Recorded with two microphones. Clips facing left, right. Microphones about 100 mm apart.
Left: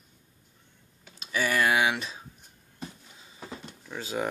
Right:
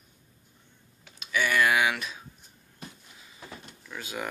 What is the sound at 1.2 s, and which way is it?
Speech, 35° left (ahead or behind).